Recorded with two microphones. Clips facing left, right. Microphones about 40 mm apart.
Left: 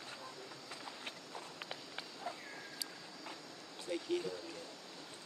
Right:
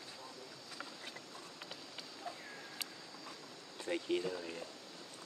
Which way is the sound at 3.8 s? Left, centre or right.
Right.